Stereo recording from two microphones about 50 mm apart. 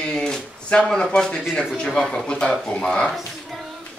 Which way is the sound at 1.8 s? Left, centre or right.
Centre.